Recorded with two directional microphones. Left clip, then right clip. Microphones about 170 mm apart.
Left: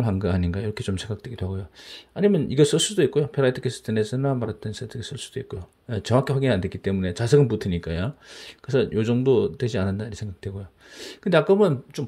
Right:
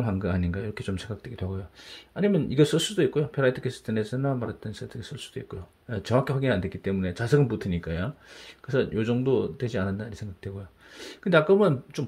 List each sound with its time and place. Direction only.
0.0 s speech: 25° left (ahead or behind)